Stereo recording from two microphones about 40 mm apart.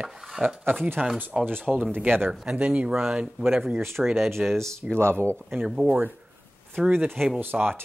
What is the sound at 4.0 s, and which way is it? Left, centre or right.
Speech, centre.